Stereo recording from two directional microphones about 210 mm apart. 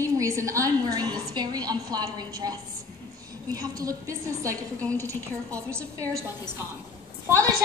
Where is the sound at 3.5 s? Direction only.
15° right (ahead or behind).